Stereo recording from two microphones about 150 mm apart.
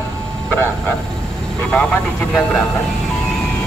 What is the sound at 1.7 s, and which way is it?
Speech, 10° left (ahead or behind).